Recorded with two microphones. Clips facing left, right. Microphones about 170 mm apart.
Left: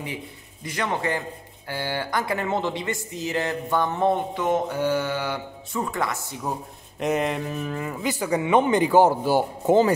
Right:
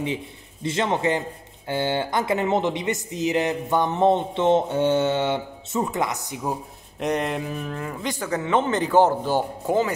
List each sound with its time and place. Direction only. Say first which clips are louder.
0.0 s speech: right 6 dB; 25° right (ahead or behind)
7.0 s speech: left 1 dB; centre (ahead or behind)
9.7 s speech: left 5 dB; 30° left (ahead or behind)